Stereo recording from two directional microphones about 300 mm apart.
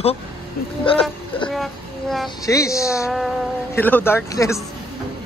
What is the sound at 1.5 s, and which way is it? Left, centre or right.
Speech, centre.